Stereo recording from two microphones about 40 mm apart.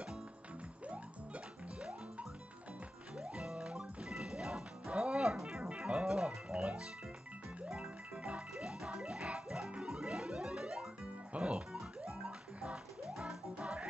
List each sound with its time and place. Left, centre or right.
0.8 s music: right
4.2 s music: centre
4.9 s music: right
6.0 s music: centre
6.5 s music: right
7.8 s music: right
8.6 s music: centre
13.6 s music: right